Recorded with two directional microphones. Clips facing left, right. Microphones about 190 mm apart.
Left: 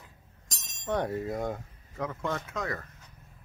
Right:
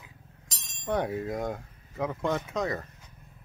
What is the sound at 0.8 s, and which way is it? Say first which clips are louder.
Speech: right 1 dB; 5° right (ahead or behind).